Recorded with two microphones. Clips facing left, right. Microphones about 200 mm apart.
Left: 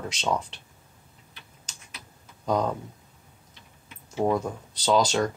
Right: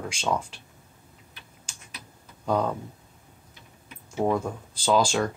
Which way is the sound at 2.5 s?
5° right (ahead or behind).